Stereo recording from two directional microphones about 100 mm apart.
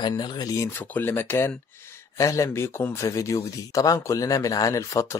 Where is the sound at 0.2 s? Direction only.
40° left (ahead or behind).